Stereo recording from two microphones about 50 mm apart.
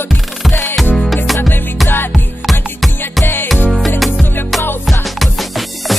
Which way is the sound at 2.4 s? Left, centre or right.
Centre.